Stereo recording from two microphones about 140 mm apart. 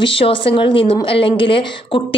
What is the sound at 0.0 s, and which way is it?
A woman's voice, 40° left (ahead or behind).